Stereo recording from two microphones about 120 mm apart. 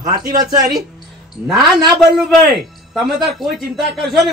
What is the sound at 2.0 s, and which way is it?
A man's voice, centre (ahead or behind).